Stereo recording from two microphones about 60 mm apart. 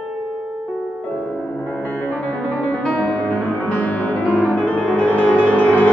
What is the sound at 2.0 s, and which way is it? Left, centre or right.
Music, left.